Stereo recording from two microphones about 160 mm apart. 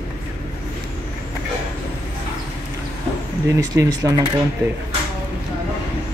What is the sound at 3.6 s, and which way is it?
Speech, 20° right (ahead or behind).